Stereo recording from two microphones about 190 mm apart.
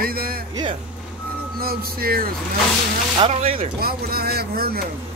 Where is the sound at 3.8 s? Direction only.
55° right (ahead or behind).